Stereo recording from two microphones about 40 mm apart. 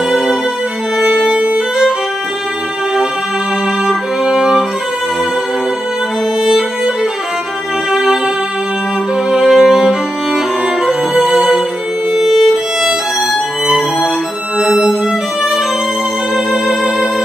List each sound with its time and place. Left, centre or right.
0.1 s music: centre
1.2 s violin: right
4.3 s music: centre
6.4 s violin: centre
7.9 s music: centre
9.4 s music: centre
10.9 s music: centre
12.1 s music: centre
12.8 s violin: centre
14.6 s violin: centre
16.3 s music: centre